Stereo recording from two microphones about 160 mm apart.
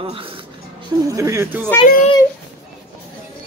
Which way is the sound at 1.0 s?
20° right (ahead or behind).